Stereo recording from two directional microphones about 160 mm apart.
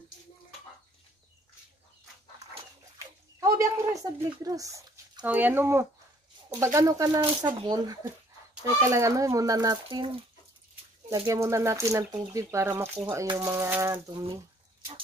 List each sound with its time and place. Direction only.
3.3 s speech: 20° right (ahead or behind)
11.2 s speech: 15° right (ahead or behind)
13.4 s a sound: 15° right (ahead or behind)